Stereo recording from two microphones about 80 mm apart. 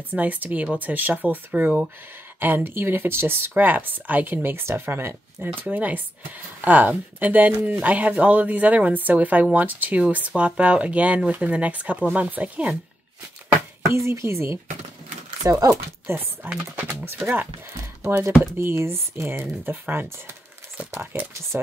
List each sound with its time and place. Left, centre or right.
0.1 s speech: right
13.8 s speech: right
15.4 s speech: right
16.1 s speech: right
18.4 s speech: right